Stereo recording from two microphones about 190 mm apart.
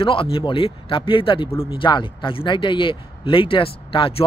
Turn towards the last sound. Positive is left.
turn(degrees=30)  # may be behind; listen again after turning